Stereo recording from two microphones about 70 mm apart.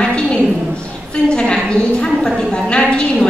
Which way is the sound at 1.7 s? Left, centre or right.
Centre.